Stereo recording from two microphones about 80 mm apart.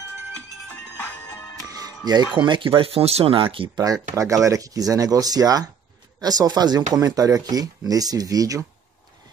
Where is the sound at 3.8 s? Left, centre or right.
Right.